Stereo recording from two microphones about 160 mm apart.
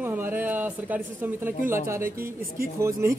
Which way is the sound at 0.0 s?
15° right (ahead or behind).